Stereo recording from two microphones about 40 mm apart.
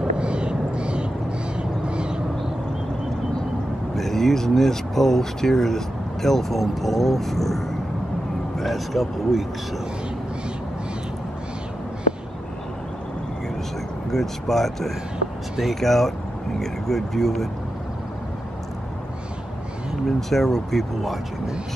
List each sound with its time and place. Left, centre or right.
0.2 s a sound: right
1.6 s crow: right
3.9 s speech: centre
14.1 s speech: centre
16.5 s vehicle: centre
20.1 s speech: centre